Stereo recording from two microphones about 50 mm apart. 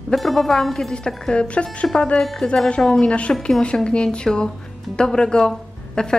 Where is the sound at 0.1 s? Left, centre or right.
Centre.